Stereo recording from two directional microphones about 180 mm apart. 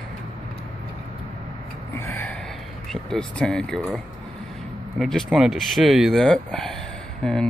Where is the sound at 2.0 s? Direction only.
10° left (ahead or behind).